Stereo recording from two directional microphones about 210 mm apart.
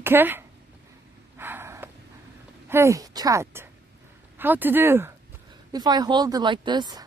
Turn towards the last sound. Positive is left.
turn(degrees=-20)  # may be behind; listen again after turning